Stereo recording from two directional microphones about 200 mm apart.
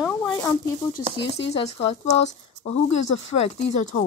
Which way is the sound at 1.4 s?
30° left (ahead or behind).